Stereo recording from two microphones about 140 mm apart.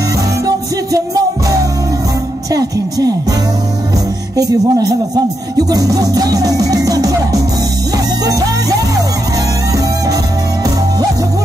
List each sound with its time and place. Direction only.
2.5 s music: 25° right (ahead or behind)
4.4 s music: 25° right (ahead or behind)
8.3 s music: 25° right (ahead or behind)